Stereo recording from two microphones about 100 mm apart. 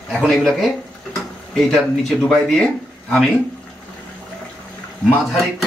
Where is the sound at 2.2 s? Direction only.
5° left (ahead or behind).